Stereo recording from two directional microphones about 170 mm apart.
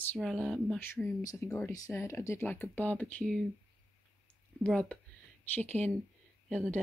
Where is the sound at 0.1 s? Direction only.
5° left (ahead or behind).